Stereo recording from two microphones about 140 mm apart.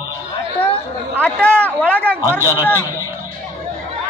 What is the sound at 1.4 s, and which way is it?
Speech, 10° left (ahead or behind).